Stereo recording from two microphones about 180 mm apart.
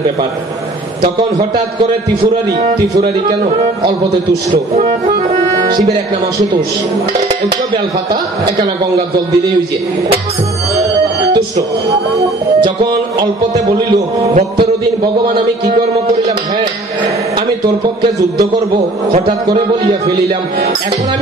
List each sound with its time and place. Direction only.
3.0 s a man's voice: 25° right (ahead or behind)
4.7 s a man's voice: 40° right (ahead or behind)
13.9 s a man's voice: 35° right (ahead or behind)